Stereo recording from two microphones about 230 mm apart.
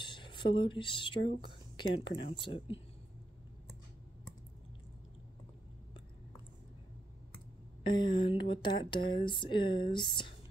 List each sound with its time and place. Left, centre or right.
0.0 s speech: left
7.8 s speech: centre